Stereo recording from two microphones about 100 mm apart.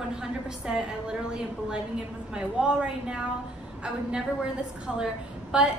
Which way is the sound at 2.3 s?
10° right (ahead or behind).